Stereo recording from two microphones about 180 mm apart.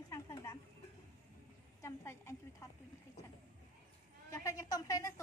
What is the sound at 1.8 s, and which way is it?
Speech, 15° left (ahead or behind).